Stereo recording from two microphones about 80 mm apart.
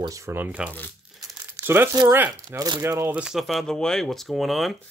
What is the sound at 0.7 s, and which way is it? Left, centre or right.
Speech, left.